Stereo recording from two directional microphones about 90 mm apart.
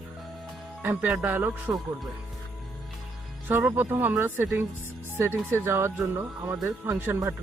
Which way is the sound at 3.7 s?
20° right (ahead or behind).